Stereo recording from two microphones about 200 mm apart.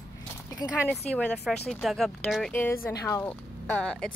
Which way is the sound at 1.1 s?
5° left (ahead or behind).